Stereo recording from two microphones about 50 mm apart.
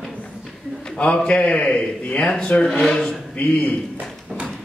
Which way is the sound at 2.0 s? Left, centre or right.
Left.